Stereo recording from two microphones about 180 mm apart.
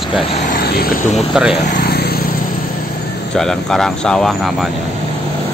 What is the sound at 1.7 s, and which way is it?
Vehicle, 60° left (ahead or behind).